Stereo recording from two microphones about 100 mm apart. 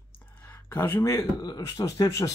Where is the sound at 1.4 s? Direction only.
35° left (ahead or behind).